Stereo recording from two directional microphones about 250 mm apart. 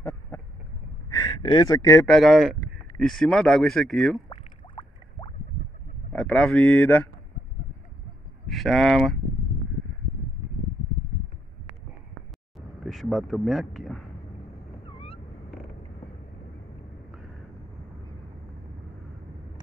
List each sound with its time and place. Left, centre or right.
0.3 s vehicle: centre
1.1 s speech: centre
4.3 s a sound: centre
6.1 s speech: centre
8.5 s speech: centre
12.8 s speech: centre